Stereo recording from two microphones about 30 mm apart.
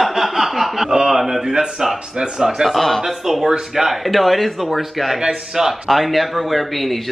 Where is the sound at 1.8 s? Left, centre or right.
Right.